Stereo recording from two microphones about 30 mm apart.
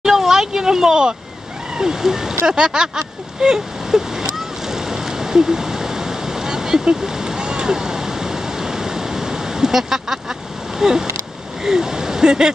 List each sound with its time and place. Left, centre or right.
0.0 s a sound: centre
1.8 s speech: centre
3.3 s waves: right
7.2 s vehicle: right
10.8 s speech: right